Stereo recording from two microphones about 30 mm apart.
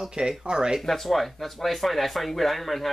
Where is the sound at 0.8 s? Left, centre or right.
Centre.